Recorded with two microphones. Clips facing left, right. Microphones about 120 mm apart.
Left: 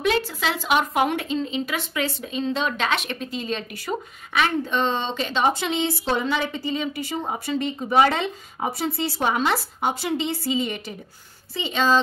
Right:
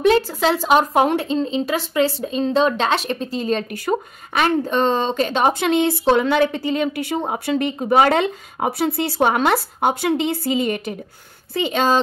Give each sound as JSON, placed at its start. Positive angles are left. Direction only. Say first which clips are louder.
{"t": 0.0, "sound": "speech", "louder": "right 7 dB", "side_deg": -40}
{"t": 7.8, "sound": "a woman's voice", "louder": "right 4 dB", "side_deg": -50}